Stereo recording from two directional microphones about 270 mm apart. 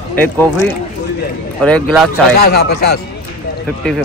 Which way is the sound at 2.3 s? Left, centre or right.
Left.